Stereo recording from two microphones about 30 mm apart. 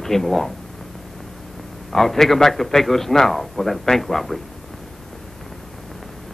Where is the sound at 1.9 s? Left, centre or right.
Centre.